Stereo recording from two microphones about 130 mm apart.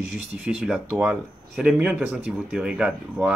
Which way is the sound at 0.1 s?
5° right (ahead or behind).